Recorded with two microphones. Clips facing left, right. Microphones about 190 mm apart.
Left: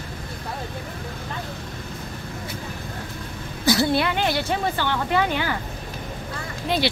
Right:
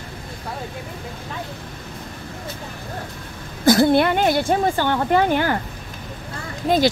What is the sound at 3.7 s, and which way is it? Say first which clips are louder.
A woman's voice: right 6 dB; 50° right (ahead or behind).